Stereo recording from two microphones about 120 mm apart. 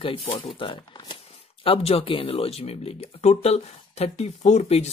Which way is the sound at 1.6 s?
55° left (ahead or behind).